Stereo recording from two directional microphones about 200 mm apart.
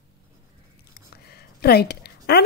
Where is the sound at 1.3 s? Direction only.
55° left (ahead or behind).